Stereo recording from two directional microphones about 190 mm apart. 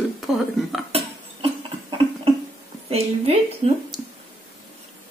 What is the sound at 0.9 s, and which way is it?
Cough, 30° right (ahead or behind).